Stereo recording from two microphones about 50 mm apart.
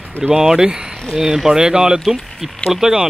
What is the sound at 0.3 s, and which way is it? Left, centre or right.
Speech, centre.